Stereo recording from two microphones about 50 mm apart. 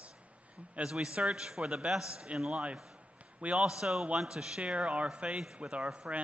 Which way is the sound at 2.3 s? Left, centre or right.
Centre.